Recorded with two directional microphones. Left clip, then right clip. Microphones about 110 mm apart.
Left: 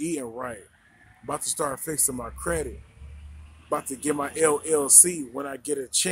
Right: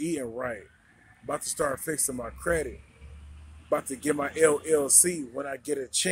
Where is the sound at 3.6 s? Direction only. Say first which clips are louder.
Even; 20° left (ahead or behind).